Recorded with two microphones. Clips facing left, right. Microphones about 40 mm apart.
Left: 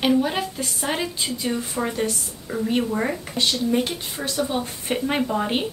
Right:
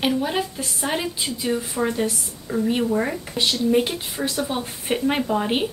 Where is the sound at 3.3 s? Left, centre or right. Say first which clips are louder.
Right 3 dB; centre.